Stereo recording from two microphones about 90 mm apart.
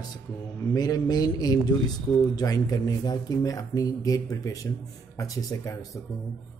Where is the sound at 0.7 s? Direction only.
45° left (ahead or behind).